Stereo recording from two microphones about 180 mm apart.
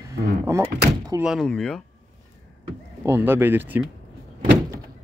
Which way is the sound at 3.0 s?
15° right (ahead or behind).